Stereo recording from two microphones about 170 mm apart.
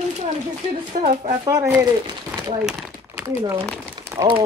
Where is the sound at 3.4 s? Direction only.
20° right (ahead or behind).